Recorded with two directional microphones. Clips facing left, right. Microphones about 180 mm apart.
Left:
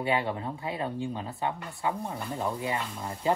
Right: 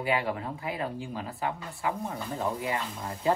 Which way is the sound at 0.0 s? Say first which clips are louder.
Even; 25° left (ahead or behind).